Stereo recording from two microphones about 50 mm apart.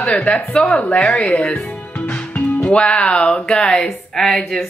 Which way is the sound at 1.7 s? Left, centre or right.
Left.